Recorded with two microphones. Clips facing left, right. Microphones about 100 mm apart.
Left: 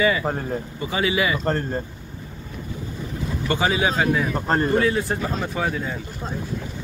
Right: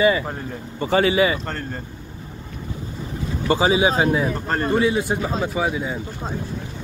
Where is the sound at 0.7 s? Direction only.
40° right (ahead or behind).